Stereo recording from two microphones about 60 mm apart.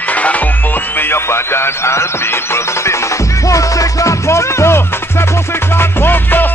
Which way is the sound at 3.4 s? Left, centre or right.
Left.